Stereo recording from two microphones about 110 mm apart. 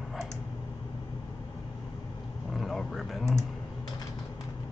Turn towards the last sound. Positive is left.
turn(degrees=0)  # may be behind; listen again after turning